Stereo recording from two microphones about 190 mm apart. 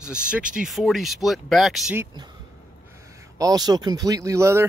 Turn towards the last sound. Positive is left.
turn(degrees=-15)  # may be behind; listen again after turning